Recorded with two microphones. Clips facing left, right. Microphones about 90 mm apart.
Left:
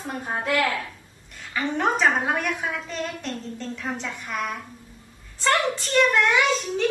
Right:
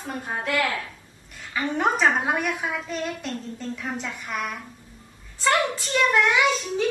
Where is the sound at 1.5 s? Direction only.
5° right (ahead or behind).